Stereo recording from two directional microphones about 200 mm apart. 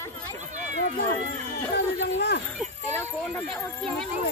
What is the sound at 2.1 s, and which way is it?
Speech, 60° left (ahead or behind).